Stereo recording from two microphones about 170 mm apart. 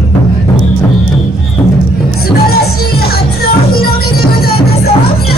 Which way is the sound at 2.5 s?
65° left (ahead or behind).